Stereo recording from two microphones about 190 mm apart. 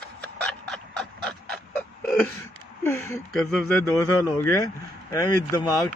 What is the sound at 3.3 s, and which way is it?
Speech, centre (ahead or behind).